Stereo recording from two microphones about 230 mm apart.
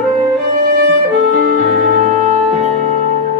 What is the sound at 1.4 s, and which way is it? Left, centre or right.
Music, right.